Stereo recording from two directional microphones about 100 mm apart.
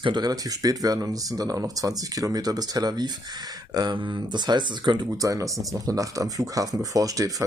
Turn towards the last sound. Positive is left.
turn(degrees=-35)  # may be behind; listen again after turning